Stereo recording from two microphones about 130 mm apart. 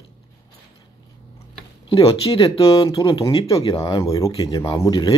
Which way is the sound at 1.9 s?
40° left (ahead or behind).